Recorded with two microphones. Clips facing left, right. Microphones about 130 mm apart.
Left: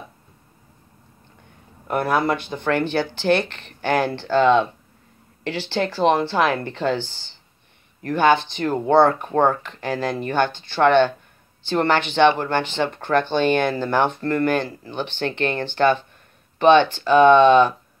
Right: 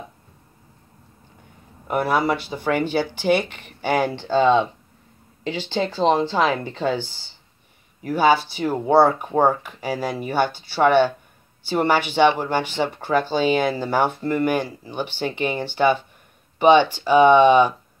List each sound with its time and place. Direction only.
1.9 s speech: 10° right (ahead or behind)